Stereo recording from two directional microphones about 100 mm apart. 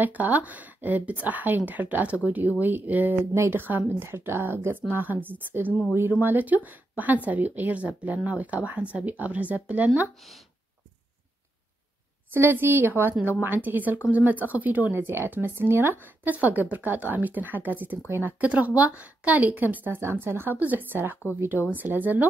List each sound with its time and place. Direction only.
0.0 s speech: 15° right (ahead or behind)
12.4 s speech: 20° right (ahead or behind)